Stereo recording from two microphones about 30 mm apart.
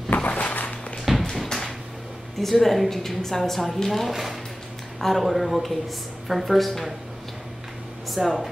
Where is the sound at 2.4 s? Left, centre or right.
Centre.